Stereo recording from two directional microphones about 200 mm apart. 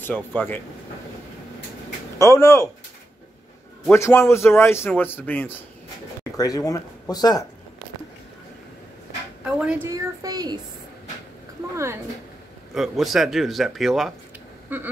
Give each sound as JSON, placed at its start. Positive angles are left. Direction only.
{"t": 0.0, "sound": "a man's voice", "side_deg": 10}
{"t": 2.1, "sound": "a man's voice", "side_deg": 15}
{"t": 3.9, "sound": "a man's voice", "side_deg": 15}
{"t": 9.4, "sound": "a woman's voice", "side_deg": -5}
{"t": 11.7, "sound": "a woman's voice", "side_deg": -15}
{"t": 12.7, "sound": "a woman's voice", "side_deg": 0}